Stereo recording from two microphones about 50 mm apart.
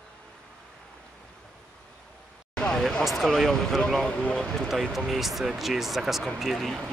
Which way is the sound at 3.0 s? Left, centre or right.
Centre.